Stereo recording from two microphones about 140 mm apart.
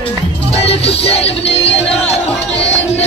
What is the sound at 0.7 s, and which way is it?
Music, 45° left (ahead or behind).